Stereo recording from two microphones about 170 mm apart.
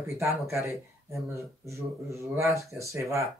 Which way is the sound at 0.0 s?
15° right (ahead or behind).